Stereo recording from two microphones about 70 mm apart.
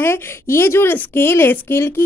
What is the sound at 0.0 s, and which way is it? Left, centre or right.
Speech, left.